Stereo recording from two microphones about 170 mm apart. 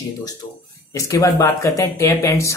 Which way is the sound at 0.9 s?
20° left (ahead or behind).